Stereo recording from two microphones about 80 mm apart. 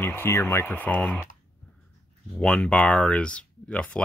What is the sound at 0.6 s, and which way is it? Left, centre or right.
Speech, centre.